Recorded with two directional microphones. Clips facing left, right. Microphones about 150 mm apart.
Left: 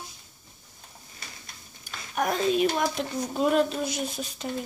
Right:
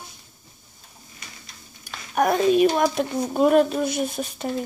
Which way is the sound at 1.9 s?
60° right (ahead or behind).